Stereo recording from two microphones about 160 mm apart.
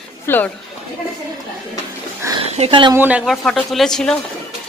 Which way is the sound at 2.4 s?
40° right (ahead or behind).